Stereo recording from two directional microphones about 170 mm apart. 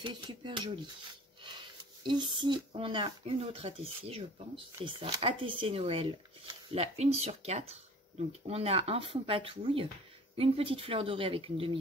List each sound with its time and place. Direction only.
0.0 s speech: 30° right (ahead or behind)